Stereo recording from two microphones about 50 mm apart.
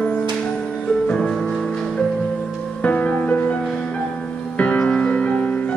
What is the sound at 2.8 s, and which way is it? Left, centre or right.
Music, left.